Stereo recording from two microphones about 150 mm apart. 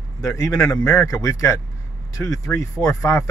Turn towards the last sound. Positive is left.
turn(degrees=20)  # may be behind; listen again after turning